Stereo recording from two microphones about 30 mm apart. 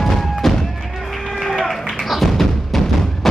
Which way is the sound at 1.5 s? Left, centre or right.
Centre.